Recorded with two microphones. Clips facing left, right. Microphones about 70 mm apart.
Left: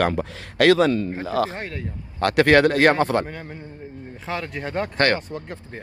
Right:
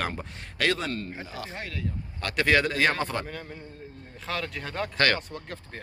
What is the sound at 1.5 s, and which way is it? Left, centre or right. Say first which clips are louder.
Speech: left 5 dB; left.